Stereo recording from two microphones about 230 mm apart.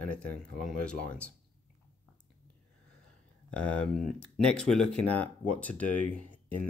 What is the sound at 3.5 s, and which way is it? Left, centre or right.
Speech, centre.